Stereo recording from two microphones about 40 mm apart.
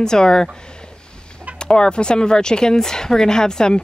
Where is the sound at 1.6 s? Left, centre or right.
Left.